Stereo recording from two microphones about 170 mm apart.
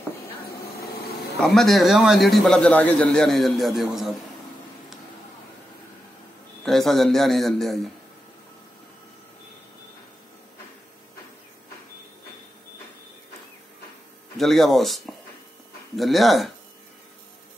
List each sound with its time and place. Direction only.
1.4 s a man's voice: centre (ahead or behind)
6.6 s a man's voice: centre (ahead or behind)
14.3 s a man's voice: centre (ahead or behind)